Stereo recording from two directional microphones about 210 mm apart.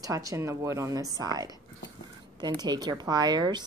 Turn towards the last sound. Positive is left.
turn(degrees=-20)  # may be behind; listen again after turning